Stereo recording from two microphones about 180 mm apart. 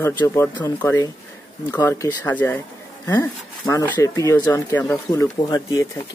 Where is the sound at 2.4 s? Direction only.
10° left (ahead or behind).